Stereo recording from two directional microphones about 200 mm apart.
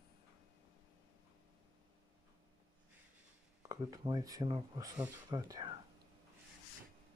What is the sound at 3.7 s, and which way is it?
Speech, 20° right (ahead or behind).